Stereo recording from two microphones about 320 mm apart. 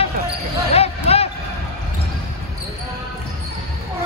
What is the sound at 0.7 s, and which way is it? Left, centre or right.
Basketball bounce, centre.